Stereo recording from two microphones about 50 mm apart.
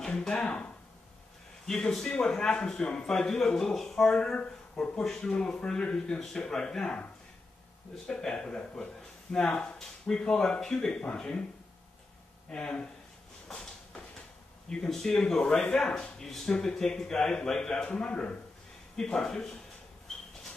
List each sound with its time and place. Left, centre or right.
0.0 s a sound: centre
1.7 s speech: centre
8.1 s speech: centre
12.4 s speech: centre
13.5 s a sound: centre
14.7 s speech: centre